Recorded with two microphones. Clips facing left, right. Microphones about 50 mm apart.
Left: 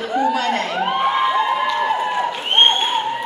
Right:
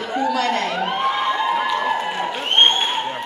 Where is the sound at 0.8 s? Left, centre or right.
Centre.